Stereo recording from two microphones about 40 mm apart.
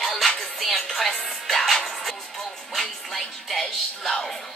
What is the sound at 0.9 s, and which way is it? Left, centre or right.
Speech, centre.